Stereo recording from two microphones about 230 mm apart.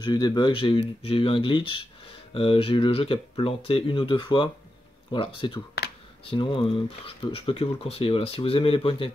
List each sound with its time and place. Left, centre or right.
0.0 s speech: centre